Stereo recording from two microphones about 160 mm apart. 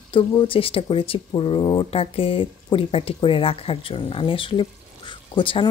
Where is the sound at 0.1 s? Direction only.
30° left (ahead or behind).